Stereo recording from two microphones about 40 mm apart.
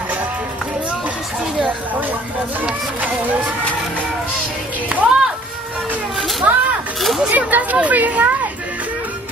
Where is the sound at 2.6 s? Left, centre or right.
Right.